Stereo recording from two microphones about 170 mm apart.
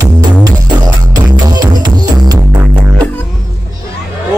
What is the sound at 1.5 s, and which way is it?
Music, 25° right (ahead or behind).